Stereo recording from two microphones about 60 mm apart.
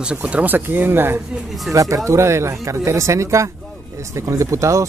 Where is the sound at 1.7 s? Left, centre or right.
Right.